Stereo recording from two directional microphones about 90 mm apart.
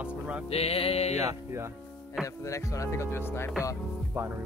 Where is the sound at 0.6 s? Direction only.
90° left.